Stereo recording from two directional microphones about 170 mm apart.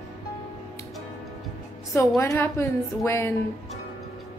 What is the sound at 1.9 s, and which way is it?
A woman's voice, 15° left (ahead or behind).